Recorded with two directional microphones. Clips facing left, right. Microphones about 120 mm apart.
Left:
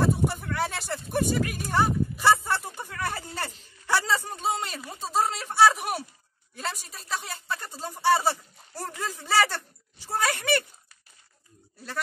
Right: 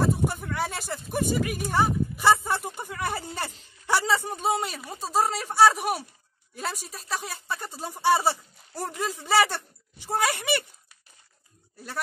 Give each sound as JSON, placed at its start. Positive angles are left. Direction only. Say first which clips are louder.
{"t": 0.0, "sound": "a sound", "louder": "even", "side_deg": 0}
{"t": 4.5, "sound": "speech", "louder": "right 2 dB", "side_deg": -5}
{"t": 7.6, "sound": "speech", "louder": "even", "side_deg": -15}